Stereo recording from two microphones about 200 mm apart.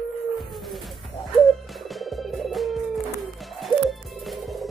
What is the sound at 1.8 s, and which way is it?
Music, centre (ahead or behind).